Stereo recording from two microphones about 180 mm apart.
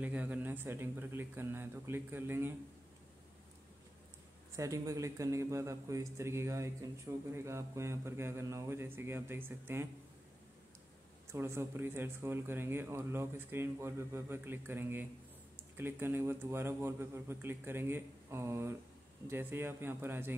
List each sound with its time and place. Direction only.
0.0 s speech: 10° right (ahead or behind)
4.6 s speech: 15° right (ahead or behind)
11.3 s speech: 15° right (ahead or behind)